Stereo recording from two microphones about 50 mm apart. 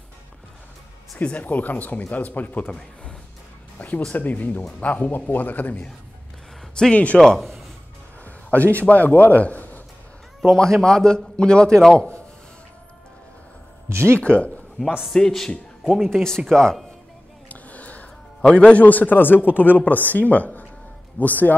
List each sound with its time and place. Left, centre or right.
1.2 s a man's voice: left
2.6 s a man's voice: centre
3.7 s music: left
4.1 s a man's voice: left
6.7 s speech: left
7.3 s a sound: centre
8.7 s a man's voice: left
10.5 s a man's voice: centre
13.8 s speech: right
14.2 s speech: left
15.1 s a man's voice: centre
17.5 s a sound: left
18.5 s a man's voice: left